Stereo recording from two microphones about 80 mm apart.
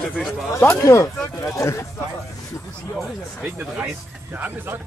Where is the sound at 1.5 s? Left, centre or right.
Left.